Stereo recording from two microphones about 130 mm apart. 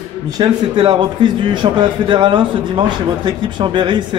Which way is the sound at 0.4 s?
35° right (ahead or behind).